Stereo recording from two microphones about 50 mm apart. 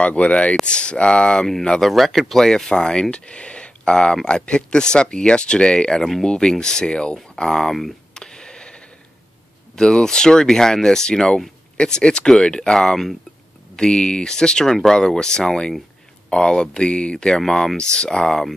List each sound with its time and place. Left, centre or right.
0.0 s speech: left
1.9 s speech: centre
8.2 s a sound: centre
9.8 s speech: centre
17.4 s speech: centre